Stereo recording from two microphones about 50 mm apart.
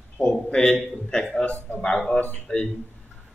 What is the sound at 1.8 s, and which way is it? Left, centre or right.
Speech, centre.